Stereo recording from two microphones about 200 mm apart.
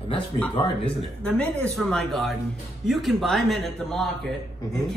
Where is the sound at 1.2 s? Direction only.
5° left (ahead or behind).